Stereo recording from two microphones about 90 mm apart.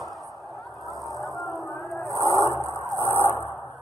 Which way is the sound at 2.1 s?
35° left (ahead or behind).